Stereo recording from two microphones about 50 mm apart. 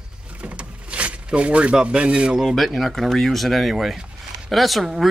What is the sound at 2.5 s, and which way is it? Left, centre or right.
Speech, centre.